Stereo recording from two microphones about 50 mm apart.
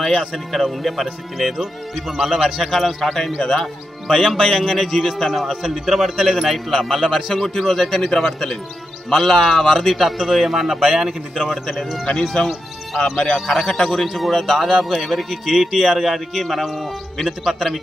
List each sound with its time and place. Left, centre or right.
0.0 s speech: centre
12.4 s speech: left
13.2 s speech: centre